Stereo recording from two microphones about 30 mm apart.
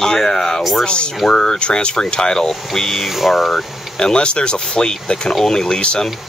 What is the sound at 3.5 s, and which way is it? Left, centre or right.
Speech, left.